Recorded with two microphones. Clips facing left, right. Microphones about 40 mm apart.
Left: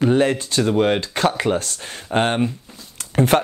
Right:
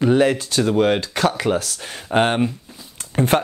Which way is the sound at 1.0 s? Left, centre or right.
Left.